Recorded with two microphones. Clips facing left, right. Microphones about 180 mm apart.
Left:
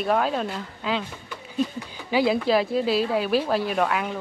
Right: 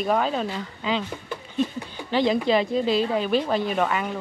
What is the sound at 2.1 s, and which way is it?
Speech, 5° left (ahead or behind).